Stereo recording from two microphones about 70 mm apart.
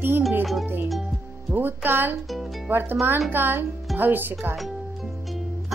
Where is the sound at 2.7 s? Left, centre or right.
Right.